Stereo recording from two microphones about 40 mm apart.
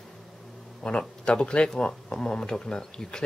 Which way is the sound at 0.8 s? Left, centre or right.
Left.